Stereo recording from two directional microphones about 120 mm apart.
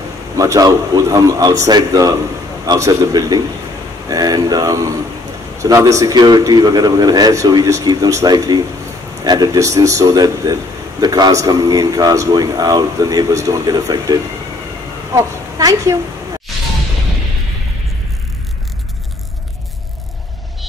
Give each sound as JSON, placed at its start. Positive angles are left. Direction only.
{"t": 0.4, "sound": "a man's voice", "side_deg": -30}
{"t": 15.1, "sound": "a woman's voice", "side_deg": -30}